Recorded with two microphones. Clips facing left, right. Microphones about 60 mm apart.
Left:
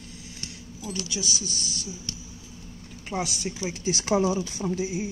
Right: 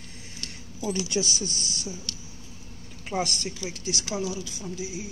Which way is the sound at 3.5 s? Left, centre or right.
Left.